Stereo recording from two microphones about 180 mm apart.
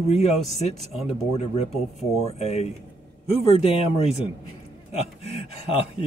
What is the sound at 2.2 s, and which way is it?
Speech, 35° left (ahead or behind).